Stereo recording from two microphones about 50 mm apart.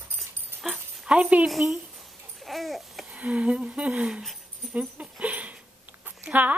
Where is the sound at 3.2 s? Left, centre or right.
Right.